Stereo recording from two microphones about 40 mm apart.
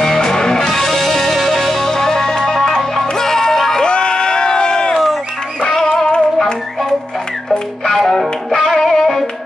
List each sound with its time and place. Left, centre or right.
0.0 s music: centre
3.8 s crowd: left
5.6 s music: centre
7.8 s music: centre